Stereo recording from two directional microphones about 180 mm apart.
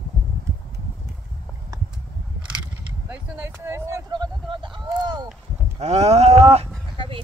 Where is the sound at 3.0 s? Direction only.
10° right (ahead or behind).